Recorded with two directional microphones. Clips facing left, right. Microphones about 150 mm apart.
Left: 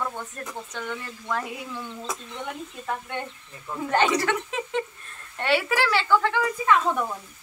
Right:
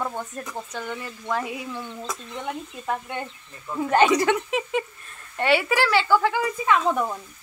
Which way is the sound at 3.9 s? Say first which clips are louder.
Right 4 dB; 15° right (ahead or behind).